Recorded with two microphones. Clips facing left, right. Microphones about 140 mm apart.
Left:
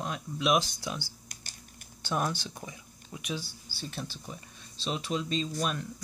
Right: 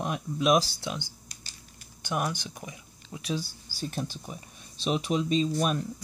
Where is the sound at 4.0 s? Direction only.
15° right (ahead or behind).